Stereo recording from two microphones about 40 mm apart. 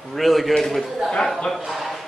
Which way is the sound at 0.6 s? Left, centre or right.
Centre.